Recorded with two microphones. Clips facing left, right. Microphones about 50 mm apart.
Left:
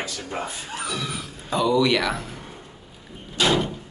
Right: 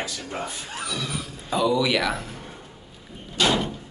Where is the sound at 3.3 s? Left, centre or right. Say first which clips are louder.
Left 1 dB; centre.